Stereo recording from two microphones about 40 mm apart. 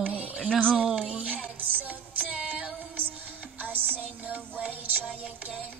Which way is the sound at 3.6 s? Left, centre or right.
Right.